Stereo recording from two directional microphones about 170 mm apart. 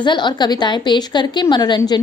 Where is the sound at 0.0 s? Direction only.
25° left (ahead or behind).